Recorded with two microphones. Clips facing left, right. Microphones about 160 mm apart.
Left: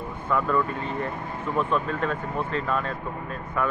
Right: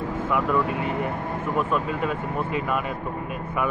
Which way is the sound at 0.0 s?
90° right.